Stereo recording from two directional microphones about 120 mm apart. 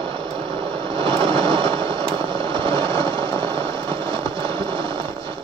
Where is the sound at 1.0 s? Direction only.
40° right (ahead or behind).